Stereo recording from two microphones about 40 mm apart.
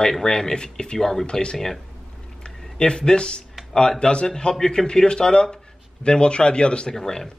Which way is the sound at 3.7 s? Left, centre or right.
Left.